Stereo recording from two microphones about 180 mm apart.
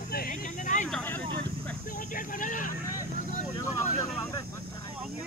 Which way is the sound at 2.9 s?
45° left (ahead or behind).